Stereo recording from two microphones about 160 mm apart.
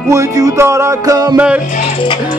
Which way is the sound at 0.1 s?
20° right (ahead or behind).